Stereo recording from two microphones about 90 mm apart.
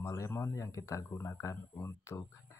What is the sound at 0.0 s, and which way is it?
Speech, 35° left (ahead or behind).